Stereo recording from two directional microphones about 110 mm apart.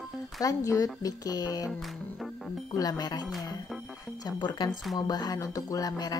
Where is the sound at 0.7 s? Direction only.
35° left (ahead or behind).